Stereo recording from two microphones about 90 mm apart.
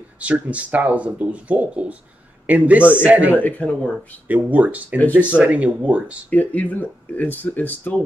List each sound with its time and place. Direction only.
0.2 s a man's voice: 15° right (ahead or behind)
3.3 s speech: 20° left (ahead or behind)
4.3 s speech: 20° right (ahead or behind)
4.9 s speech: 20° left (ahead or behind)
5.4 s speech: 15° right (ahead or behind)
6.3 s speech: 20° left (ahead or behind)